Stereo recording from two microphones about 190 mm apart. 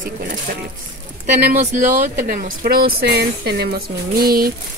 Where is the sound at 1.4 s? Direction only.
40° right (ahead or behind).